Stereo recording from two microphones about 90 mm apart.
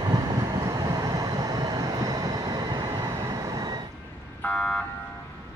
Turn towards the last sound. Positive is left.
turn(degrees=5)  # may be behind; listen again after turning